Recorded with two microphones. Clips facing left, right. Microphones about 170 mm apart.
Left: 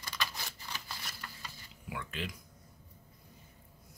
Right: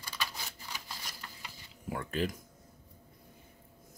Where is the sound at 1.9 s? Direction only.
45° right (ahead or behind).